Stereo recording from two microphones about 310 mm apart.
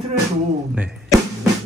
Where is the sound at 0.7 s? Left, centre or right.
Centre.